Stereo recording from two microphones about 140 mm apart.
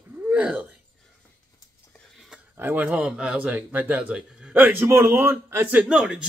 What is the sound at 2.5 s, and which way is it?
A man's voice, 15° right (ahead or behind).